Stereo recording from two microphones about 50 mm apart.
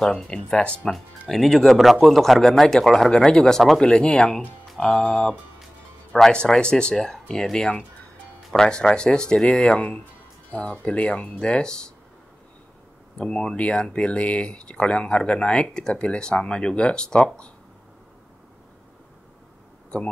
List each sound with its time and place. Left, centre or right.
0.0 s speech: centre
1.3 s speech: centre
3.1 s speech: centre
6.3 s speech: centre
13.2 s speech: left